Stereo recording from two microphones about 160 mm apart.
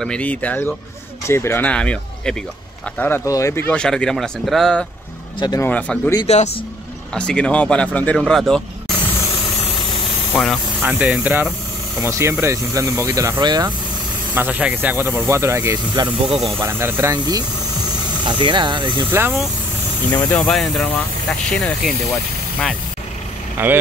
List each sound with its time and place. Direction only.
0.0 s speech: 5° left (ahead or behind)
6.2 s speech: 45° left (ahead or behind)
7.2 s speech: 5° left (ahead or behind)
10.3 s speech: 5° left (ahead or behind)
10.8 s speech: 10° right (ahead or behind)
12.0 s speech: 20° right (ahead or behind)
14.3 s speech: 10° right (ahead or behind)
16.3 s speech: centre (ahead or behind)
16.6 s speech: 15° right (ahead or behind); by 19.0 s 30° right (ahead or behind)
19.0 s speech: 15° right (ahead or behind)
20.2 s speech: 5° left (ahead or behind)
23.6 s speech: 15° right (ahead or behind)